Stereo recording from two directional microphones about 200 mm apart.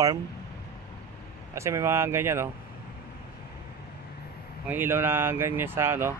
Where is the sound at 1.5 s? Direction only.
15° right (ahead or behind).